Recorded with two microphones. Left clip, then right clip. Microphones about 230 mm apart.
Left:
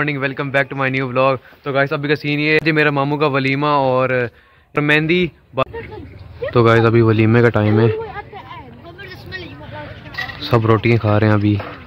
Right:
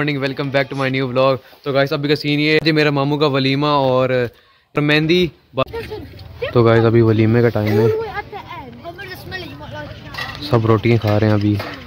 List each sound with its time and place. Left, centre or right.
0.0 s speech: centre
8.0 s a sound: right
10.4 s speech: centre